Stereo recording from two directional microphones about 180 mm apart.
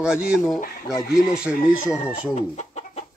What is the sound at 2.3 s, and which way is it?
Chicken, 40° left (ahead or behind).